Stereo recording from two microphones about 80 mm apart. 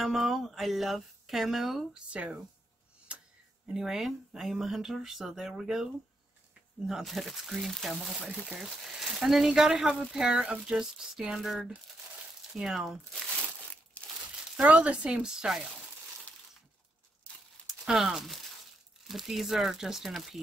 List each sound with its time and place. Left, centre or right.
0.0 s speech: centre
2.0 s speech: centre
3.1 s a sound: centre
3.6 s speech: centre
13.4 s crumpling: centre
14.2 s speech: centre
17.6 s speech: centre